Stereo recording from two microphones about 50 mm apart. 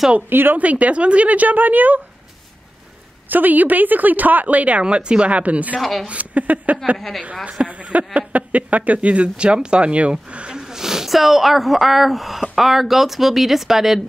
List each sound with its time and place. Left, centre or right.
0.3 s speech: right
0.6 s speech: right
3.3 s speech: right
5.8 s speech: centre
6.0 s speech: right
7.0 s speech: centre
7.4 s speech: right; by 14.0 s centre